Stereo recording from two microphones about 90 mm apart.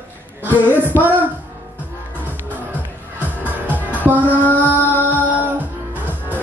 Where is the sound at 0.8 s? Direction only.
20° right (ahead or behind).